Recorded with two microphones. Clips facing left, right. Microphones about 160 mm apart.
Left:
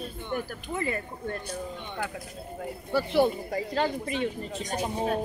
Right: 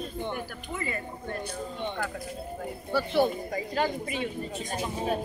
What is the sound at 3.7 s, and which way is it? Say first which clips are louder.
Speech: left 1 dB; 10° right (ahead or behind).